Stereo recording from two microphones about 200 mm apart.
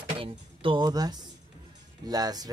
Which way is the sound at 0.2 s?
25° right (ahead or behind).